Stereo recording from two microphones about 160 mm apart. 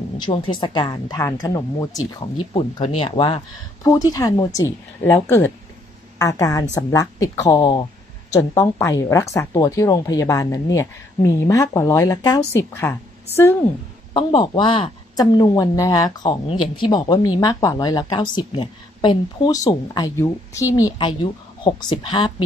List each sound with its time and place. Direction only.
0.2 s speech: 30° left (ahead or behind)
3.8 s speech: 20° left (ahead or behind)
5.0 s speech: 10° left (ahead or behind); by 8.4 s 30° left (ahead or behind)
8.4 s speech: 15° left (ahead or behind)
14.1 s speech: 30° left (ahead or behind)